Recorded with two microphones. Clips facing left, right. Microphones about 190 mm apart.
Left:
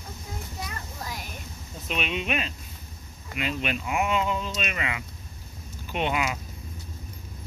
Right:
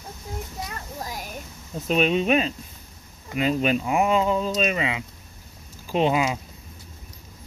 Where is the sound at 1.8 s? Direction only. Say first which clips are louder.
Right 9 dB; 40° right (ahead or behind).